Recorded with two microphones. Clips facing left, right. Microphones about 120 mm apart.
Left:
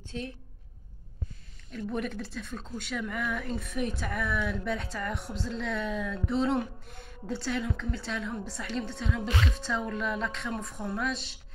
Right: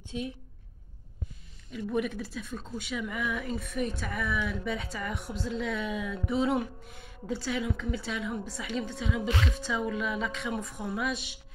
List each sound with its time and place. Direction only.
0.1 s a woman's voice: 15° right (ahead or behind)
1.7 s a woman's voice: 5° right (ahead or behind)